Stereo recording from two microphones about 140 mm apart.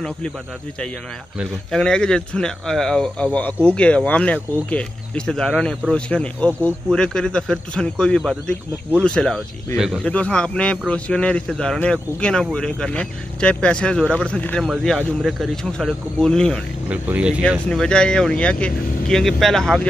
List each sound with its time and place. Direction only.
1.4 s speech: 5° left (ahead or behind)
16.9 s speech: 10° right (ahead or behind)
17.6 s speech: 5° left (ahead or behind)